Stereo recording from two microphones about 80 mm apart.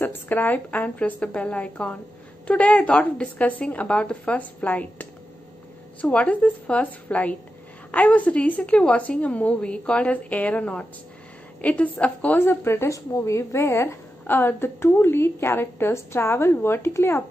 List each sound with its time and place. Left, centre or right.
0.0 s a woman's voice: left
12.4 s speech: left